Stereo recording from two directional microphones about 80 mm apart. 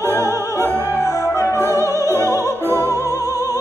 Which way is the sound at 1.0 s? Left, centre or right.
Left.